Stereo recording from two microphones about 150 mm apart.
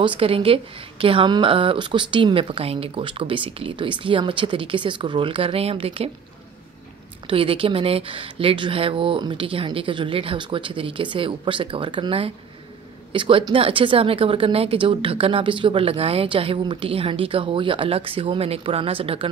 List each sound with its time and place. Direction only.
0.0 s a woman's voice: 35° right (ahead or behind)
7.2 s a woman's voice: 35° right (ahead or behind)